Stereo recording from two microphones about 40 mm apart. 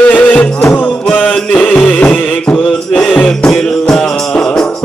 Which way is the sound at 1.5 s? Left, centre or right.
Left.